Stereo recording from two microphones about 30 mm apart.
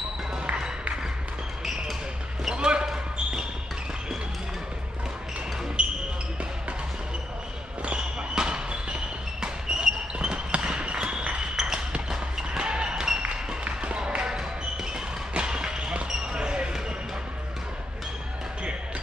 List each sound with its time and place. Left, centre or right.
2.5 s basketball bounce: right
5.8 s basketball bounce: right
7.8 s basketball bounce: right
9.4 s a sound: right
10.1 s basketball bounce: right
11.5 s music: centre
12.9 s music: centre
13.9 s a sound: right
15.3 s a sound: right
16.3 s basketball bounce: right